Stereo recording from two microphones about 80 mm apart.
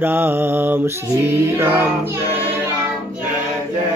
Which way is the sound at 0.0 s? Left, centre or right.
Right.